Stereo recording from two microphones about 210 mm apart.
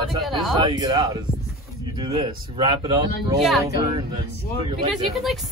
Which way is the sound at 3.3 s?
Centre (ahead or behind).